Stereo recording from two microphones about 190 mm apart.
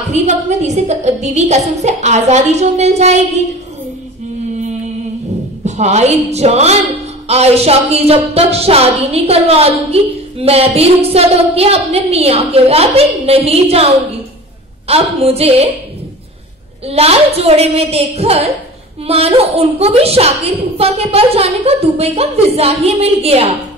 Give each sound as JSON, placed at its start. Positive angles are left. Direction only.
{"t": 0.1, "sound": "a woman's voice", "side_deg": -35}
{"t": 5.8, "sound": "a woman's voice", "side_deg": -35}
{"t": 16.8, "sound": "a woman's voice", "side_deg": -30}